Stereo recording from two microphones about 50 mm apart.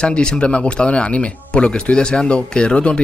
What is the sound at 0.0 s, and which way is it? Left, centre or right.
Speech, centre.